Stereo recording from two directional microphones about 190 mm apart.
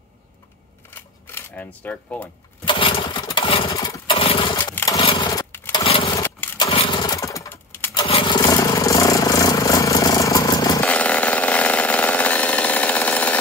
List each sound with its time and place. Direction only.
0.8 s camera: 10° left (ahead or behind)
2.6 s lawn mower: 25° left (ahead or behind)
4.7 s chainsaw: 20° left (ahead or behind)
6.1 s a sound: 15° left (ahead or behind)
6.7 s lawn mower: 25° left (ahead or behind); by 7.9 s 10° left (ahead or behind)
7.9 s vehicle: 25° left (ahead or behind)
10.8 s a sound: 5° left (ahead or behind)